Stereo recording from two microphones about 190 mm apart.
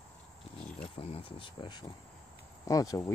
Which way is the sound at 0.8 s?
30° left (ahead or behind).